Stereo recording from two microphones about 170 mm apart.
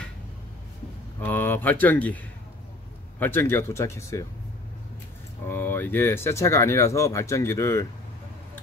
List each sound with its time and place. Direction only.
1.2 s speech: 10° left (ahead or behind)
3.2 s speech: 10° left (ahead or behind)
5.5 s speech: 10° left (ahead or behind)